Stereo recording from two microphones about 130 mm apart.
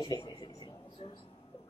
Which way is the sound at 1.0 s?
45° left (ahead or behind).